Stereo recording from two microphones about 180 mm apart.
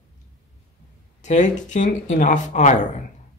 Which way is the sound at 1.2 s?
40° left (ahead or behind).